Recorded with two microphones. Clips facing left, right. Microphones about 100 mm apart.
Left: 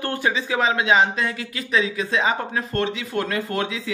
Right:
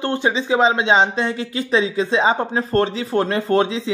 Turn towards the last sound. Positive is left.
turn(degrees=-30)  # may be behind; listen again after turning